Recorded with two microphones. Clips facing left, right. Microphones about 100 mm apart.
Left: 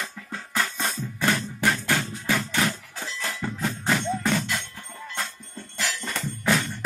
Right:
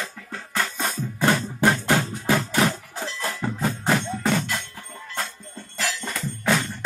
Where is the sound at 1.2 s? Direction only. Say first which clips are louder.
Right 4 dB; 25° right (ahead or behind).